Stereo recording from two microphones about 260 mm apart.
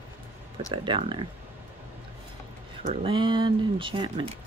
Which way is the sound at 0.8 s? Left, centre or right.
Centre.